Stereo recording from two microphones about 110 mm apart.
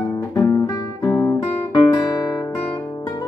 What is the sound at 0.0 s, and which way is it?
Guitar, 30° left (ahead or behind).